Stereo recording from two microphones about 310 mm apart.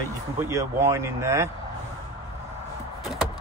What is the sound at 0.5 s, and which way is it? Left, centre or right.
Speech, centre.